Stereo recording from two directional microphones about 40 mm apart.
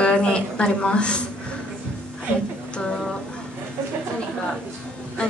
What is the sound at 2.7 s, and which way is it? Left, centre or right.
Music, left.